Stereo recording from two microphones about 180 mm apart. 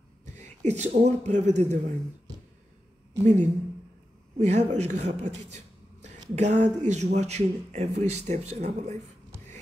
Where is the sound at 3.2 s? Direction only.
40° right (ahead or behind).